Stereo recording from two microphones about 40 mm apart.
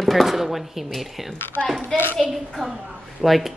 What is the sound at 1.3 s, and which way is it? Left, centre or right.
Speech, left.